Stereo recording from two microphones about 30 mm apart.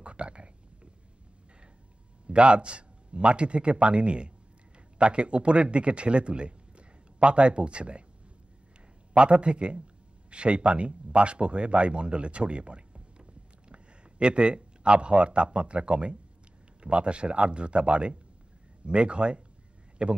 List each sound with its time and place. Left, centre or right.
0.0 s a sound: right
2.2 s a man's voice: right
9.1 s a man's voice: right